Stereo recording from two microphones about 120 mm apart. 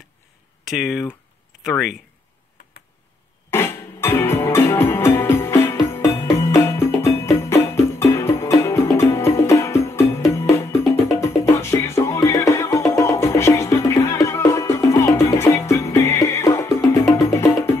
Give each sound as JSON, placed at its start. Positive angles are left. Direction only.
{"t": 0.7, "sound": "speech", "side_deg": -5}
{"t": 3.4, "sound": "music", "side_deg": 20}